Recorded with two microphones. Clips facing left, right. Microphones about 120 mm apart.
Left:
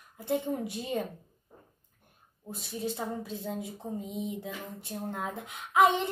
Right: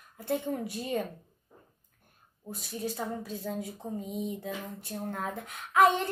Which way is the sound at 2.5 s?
25° left (ahead or behind).